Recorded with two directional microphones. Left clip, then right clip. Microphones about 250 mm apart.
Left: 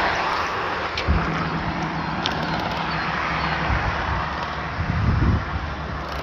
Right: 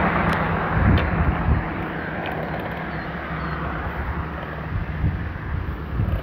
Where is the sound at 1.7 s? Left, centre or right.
Left.